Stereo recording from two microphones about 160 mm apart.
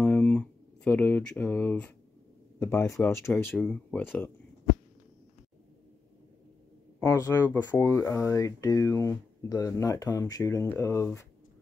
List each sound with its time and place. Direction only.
0.0 s a sound: 10° left (ahead or behind)
2.6 s speech: 15° left (ahead or behind)
7.0 s speech: 20° left (ahead or behind)